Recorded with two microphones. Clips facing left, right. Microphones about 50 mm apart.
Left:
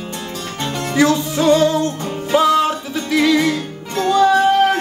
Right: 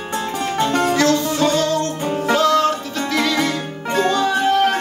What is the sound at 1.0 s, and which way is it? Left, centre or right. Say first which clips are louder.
Music: left 1 dB; centre.